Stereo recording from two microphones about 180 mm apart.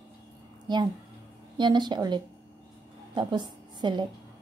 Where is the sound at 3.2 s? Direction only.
25° right (ahead or behind).